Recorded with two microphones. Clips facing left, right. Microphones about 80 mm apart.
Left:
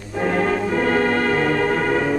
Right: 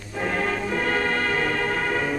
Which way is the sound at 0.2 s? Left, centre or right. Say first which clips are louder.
Left 6 dB; left.